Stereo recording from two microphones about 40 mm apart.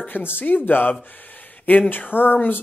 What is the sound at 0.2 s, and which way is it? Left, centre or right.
Speech, left.